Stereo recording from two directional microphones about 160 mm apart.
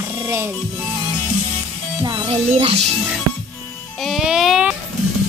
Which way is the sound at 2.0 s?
30° right (ahead or behind).